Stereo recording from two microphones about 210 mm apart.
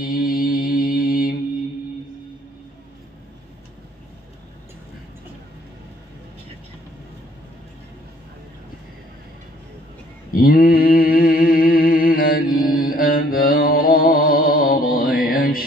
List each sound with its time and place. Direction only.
0.0 s music: 45° left (ahead or behind)
10.3 s mantra: 45° left (ahead or behind)
12.6 s music: 45° left (ahead or behind)